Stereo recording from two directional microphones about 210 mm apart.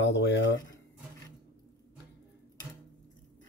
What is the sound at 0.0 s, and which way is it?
Speech, 55° left (ahead or behind).